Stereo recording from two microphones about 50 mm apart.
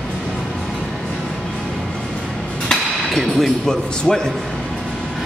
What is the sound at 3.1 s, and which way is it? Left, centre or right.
Music, centre.